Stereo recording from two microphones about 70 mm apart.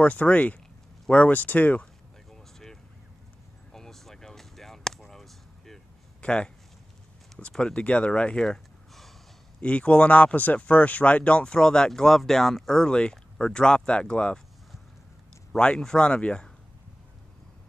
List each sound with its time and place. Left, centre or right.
0.0 s speech: left
2.3 s a sound: centre
6.2 s speech: centre
9.6 s speech: centre
15.5 s speech: centre